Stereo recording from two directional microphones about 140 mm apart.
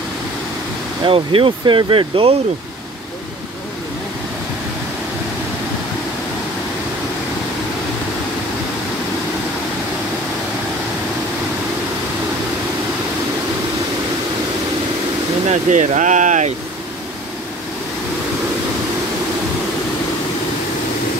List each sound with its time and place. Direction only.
1.0 s speech: 40° right (ahead or behind)
15.4 s speech: 60° right (ahead or behind)